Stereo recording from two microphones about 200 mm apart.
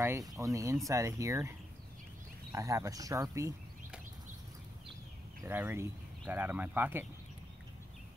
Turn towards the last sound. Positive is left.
turn(degrees=-10)  # may be behind; listen again after turning